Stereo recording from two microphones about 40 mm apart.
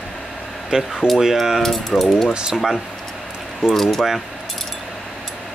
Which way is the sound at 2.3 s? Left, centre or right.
Right.